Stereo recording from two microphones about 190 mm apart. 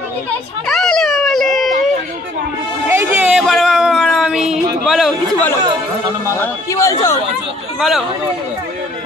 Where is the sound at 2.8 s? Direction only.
10° right (ahead or behind).